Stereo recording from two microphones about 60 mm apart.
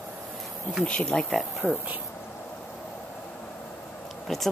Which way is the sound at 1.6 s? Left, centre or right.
Right.